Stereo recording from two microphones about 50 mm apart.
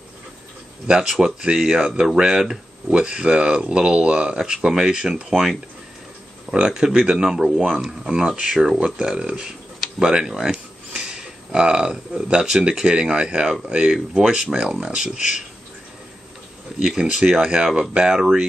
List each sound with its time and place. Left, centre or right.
1.0 s speech: centre
16.8 s speech: centre